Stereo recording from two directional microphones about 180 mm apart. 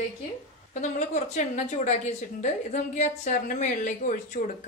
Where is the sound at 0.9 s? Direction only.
40° left (ahead or behind).